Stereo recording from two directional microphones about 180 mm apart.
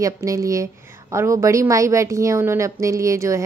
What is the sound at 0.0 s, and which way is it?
Speech, 20° right (ahead or behind).